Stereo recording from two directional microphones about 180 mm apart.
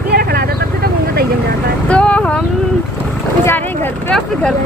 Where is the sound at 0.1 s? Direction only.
60° right (ahead or behind).